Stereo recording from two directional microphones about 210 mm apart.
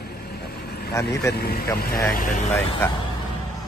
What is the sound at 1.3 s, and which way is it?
Speech, 50° left (ahead or behind).